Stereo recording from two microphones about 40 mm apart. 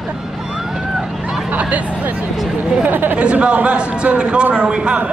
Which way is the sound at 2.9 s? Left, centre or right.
Right.